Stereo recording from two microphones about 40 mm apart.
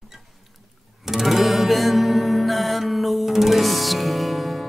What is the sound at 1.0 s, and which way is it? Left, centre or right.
Music, centre.